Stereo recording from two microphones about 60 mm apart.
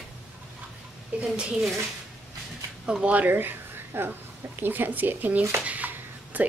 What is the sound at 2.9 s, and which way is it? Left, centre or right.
Speech, right.